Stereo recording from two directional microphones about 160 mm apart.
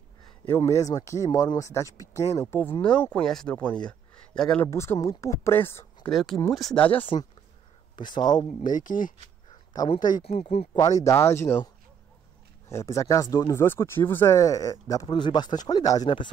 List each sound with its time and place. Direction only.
0.5 s speech: 20° left (ahead or behind)
4.6 s speech: 15° left (ahead or behind)
6.0 s speech: centre (ahead or behind)
7.9 s speech: 30° left (ahead or behind)
8.6 s speech: 55° left (ahead or behind)
10.7 s speech: 20° left (ahead or behind)